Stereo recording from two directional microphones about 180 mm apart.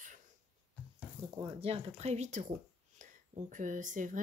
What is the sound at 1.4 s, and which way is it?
Speech, 35° right (ahead or behind).